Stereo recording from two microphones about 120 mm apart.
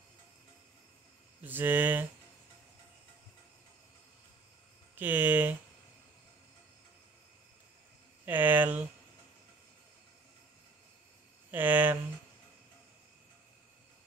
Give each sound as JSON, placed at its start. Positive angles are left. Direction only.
{"t": 1.4, "sound": "speech", "side_deg": -15}
{"t": 4.9, "sound": "speech", "side_deg": -15}
{"t": 8.3, "sound": "speech", "side_deg": -15}
{"t": 11.5, "sound": "speech", "side_deg": -15}